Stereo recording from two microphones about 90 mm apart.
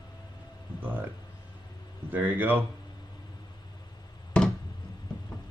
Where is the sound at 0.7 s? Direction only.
20° right (ahead or behind).